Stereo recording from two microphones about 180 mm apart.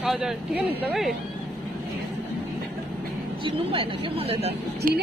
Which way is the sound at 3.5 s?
30° right (ahead or behind).